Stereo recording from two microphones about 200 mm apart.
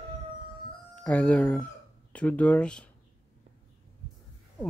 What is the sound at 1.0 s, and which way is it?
Speech, 5° left (ahead or behind).